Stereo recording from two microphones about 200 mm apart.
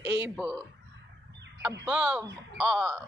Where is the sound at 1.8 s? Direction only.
5° right (ahead or behind).